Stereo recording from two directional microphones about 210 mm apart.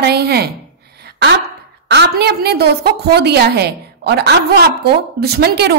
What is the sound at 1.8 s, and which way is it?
A woman's voice, 50° right (ahead or behind).